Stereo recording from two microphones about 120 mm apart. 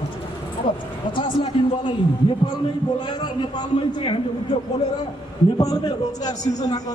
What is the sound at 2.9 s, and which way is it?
A man's voice, 35° left (ahead or behind).